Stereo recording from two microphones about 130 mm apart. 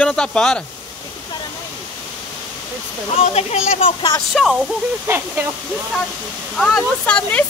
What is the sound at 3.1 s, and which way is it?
Speech, 55° left (ahead or behind).